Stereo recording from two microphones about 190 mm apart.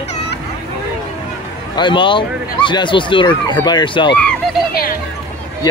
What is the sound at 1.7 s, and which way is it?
Speech, 25° left (ahead or behind).